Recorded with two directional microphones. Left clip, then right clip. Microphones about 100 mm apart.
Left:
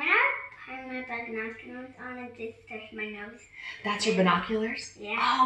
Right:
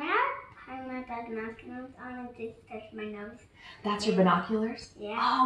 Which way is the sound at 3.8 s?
20° right (ahead or behind).